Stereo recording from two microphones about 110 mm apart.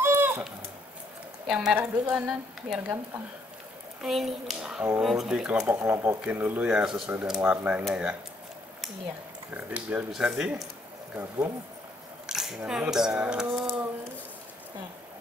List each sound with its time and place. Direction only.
0.0 s a sound: 20° right (ahead or behind)
1.8 s speech: 10° right (ahead or behind)
4.0 s speech: centre (ahead or behind)
5.6 s speech: 25° right (ahead or behind)
9.7 s speech: 15° right (ahead or behind)
11.1 s speech: 25° right (ahead or behind)
12.3 s speech: 5° right (ahead or behind)